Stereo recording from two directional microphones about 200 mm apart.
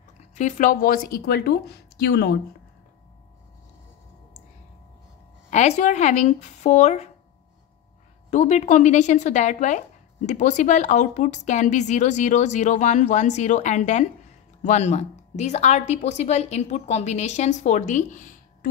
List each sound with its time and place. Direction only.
0.2 s speech: 35° left (ahead or behind); by 2.3 s 55° left (ahead or behind)
5.5 s speech: 35° left (ahead or behind)
8.3 s speech: 35° left (ahead or behind)